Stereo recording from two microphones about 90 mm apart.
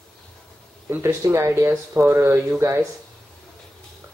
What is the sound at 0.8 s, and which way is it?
Speech, 30° right (ahead or behind).